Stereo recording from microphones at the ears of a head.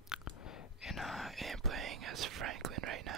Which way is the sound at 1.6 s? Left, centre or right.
Right.